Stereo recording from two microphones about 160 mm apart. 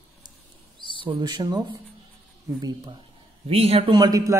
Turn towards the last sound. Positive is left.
turn(degrees=-25)  # may be behind; listen again after turning